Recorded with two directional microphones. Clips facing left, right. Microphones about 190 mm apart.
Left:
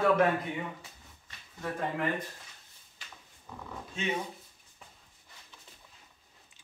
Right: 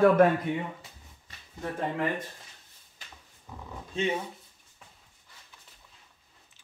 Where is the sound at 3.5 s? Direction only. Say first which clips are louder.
Even; 20° right (ahead or behind).